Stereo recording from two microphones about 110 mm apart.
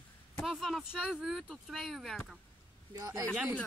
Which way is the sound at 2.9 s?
30° right (ahead or behind).